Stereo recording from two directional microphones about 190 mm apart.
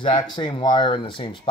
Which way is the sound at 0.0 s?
25° left (ahead or behind).